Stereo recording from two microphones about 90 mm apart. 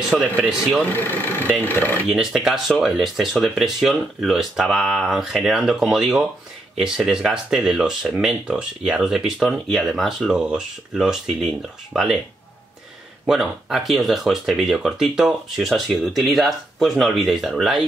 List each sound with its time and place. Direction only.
0.1 s speech: centre (ahead or behind)
0.7 s speech: 20° left (ahead or behind)
2.0 s speech: 5° right (ahead or behind)
13.3 s speech: 5° right (ahead or behind)